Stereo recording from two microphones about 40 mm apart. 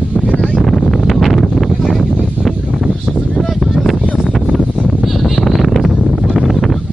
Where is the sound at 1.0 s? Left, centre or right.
Centre.